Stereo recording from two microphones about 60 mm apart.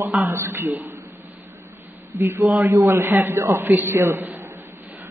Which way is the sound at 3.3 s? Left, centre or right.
Right.